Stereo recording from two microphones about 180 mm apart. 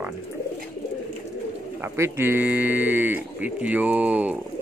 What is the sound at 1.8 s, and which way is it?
Speech, 15° right (ahead or behind).